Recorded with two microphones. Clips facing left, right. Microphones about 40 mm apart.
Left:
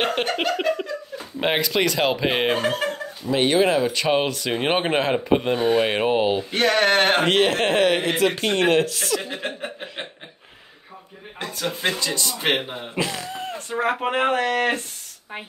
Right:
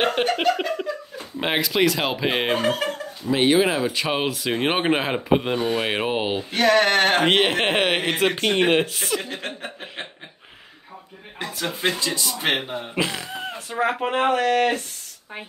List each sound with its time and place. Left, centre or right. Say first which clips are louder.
0.0 s laughter: right 2 dB; centre
0.4 s speech: even; centre
6.6 s speech: right 1 dB; centre
7.2 s a man's voice: even; right
8.3 s a man's voice: right 3 dB; centre
11.8 s speech: right 1 dB; centre
12.9 s speech: even; centre
13.7 s speech: even; centre